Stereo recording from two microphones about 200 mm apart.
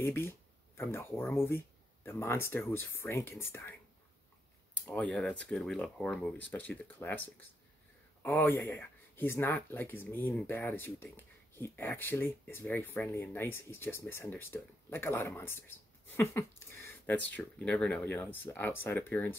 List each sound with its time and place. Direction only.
0.0 s speech: 10° left (ahead or behind)
4.8 s speech: 5° left (ahead or behind)
16.7 s a sound: 10° left (ahead or behind)
17.3 s speech: 5° left (ahead or behind)